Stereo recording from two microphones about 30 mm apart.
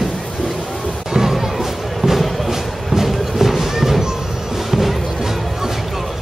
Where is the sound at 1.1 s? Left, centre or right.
Centre.